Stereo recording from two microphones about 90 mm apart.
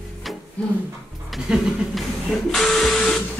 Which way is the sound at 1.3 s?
Centre (ahead or behind).